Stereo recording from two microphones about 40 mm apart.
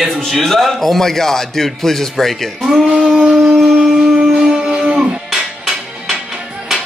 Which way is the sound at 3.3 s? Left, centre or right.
Right.